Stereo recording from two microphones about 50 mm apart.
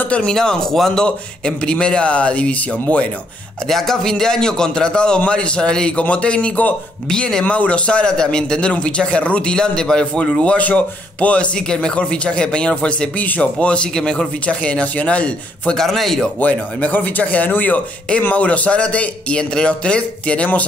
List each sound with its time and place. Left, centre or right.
0.3 s a man's voice: centre
1.0 s a man's voice: centre
3.6 s a man's voice: centre; by 6.7 s left
7.1 s a man's voice: centre
7.4 s a man's voice: left
10.4 s a man's voice: left
15.7 s a man's voice: centre
16.3 s a man's voice: left